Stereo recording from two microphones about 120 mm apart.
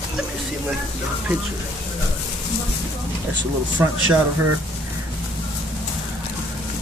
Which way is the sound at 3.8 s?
15° right (ahead or behind).